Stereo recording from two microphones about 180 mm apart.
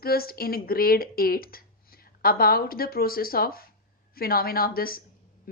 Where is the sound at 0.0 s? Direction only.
55° left (ahead or behind).